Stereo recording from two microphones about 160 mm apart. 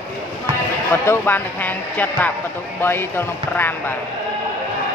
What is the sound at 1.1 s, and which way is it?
Speech, 10° left (ahead or behind).